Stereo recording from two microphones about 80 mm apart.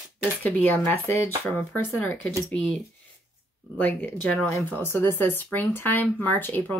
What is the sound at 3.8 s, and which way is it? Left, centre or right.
Speech, left.